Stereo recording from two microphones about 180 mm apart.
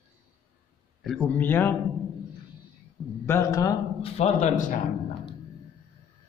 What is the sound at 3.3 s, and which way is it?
Speech, 15° left (ahead or behind).